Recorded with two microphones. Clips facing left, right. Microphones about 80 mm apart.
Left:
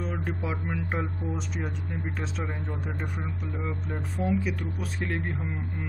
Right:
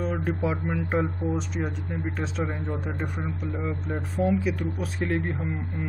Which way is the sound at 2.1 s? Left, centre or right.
Centre.